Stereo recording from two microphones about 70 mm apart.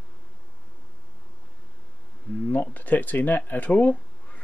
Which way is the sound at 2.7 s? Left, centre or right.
Left.